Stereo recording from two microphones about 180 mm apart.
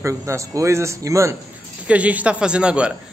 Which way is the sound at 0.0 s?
15° right (ahead or behind).